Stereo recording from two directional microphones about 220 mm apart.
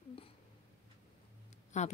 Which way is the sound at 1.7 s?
30° left (ahead or behind).